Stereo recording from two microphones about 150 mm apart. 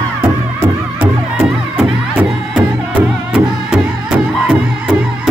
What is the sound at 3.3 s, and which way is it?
Music, 5° right (ahead or behind).